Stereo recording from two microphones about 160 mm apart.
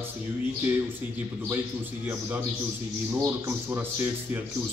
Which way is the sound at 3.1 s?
15° right (ahead or behind).